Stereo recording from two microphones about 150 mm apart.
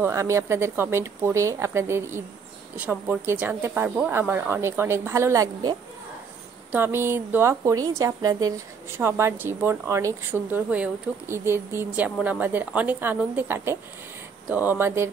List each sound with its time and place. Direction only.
0.0 s a woman's voice: 20° right (ahead or behind)
6.7 s a woman's voice: 15° right (ahead or behind)